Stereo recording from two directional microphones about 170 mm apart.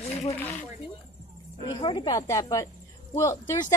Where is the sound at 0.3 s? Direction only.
10° left (ahead or behind).